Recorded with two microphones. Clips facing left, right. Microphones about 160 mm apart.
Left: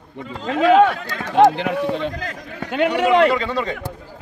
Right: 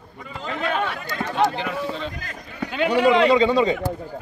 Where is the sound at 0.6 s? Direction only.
80° left.